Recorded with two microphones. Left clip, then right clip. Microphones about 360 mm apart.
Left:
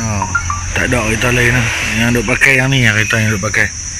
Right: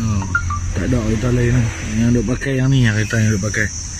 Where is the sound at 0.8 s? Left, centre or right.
Left.